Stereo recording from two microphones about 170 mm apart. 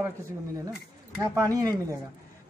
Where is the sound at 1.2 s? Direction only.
20° right (ahead or behind).